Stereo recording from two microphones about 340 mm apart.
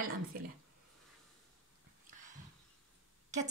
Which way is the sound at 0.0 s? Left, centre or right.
Right.